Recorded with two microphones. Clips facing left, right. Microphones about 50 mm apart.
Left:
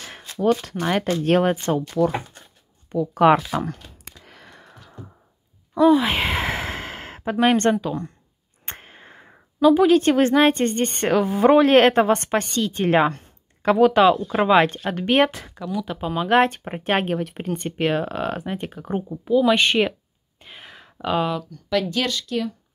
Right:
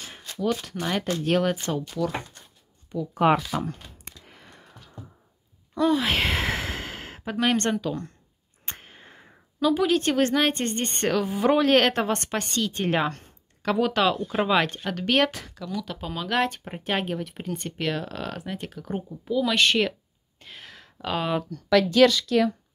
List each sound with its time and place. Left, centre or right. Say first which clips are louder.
0.4 s speech: left 6 dB; left
2.9 s speech: left 5 dB; left
4.3 s a sound: left 4 dB; left
5.8 s a sound: left 6 dB; centre
7.2 s a woman's voice: left 6 dB; left
12.8 s speech: left 8 dB; left
13.7 s speech: left 8 dB; centre
16.3 s speech: left 7 dB; left
19.2 s speech: left 5 dB; centre
20.3 s a sound: left 2 dB; centre
22.3 s speech: right 4 dB; right